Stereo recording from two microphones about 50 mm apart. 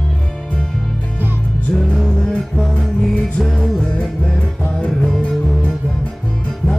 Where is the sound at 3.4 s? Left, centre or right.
Centre.